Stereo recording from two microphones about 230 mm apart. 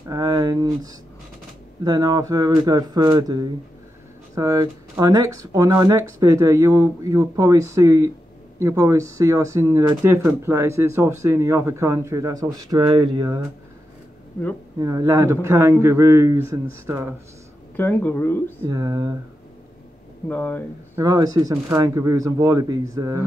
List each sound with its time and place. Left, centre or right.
0.1 s a sound: centre
1.9 s speech: centre
14.8 s speech: centre
17.7 s speech: centre
18.6 s speech: centre
20.2 s speech: centre
20.9 s speech: centre